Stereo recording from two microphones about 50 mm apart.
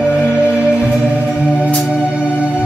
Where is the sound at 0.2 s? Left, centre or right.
Left.